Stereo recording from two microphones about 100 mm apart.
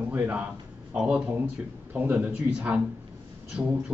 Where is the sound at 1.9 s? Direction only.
20° right (ahead or behind).